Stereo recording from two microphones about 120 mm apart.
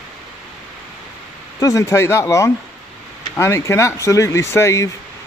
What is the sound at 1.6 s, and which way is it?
A man's voice, 25° left (ahead or behind).